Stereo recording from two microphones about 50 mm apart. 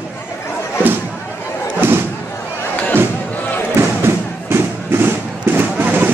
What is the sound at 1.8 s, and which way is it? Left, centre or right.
Slam, right.